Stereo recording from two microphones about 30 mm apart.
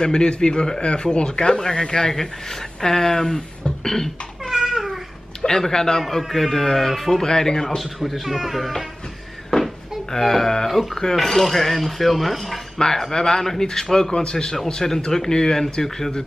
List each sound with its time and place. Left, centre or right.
0.0 s speech: left
3.3 s speech: left
3.8 s speech: centre
4.5 s babbling: centre
5.6 s speech: centre
7.2 s speech: centre
7.8 s speech: centre
10.1 s speech: centre
12.7 s speech: centre
14.8 s speech: centre